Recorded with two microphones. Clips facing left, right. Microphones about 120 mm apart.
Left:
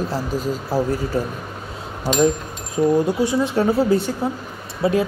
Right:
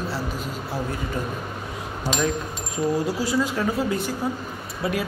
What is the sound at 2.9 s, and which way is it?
Speech, 25° left (ahead or behind).